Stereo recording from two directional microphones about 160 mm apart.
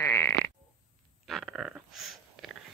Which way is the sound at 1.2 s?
Centre (ahead or behind).